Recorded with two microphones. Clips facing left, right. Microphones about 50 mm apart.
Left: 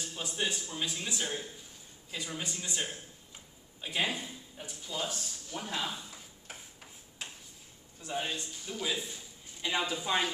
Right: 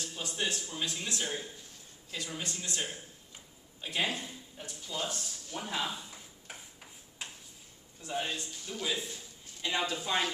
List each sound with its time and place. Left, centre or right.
0.0 s a man's voice: centre
5.6 s a sound: centre
8.1 s a man's voice: centre